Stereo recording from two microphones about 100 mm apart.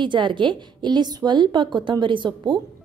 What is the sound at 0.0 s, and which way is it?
A woman's voice, 55° right (ahead or behind).